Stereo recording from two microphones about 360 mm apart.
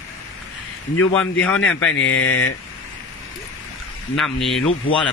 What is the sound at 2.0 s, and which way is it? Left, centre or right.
Speech, left.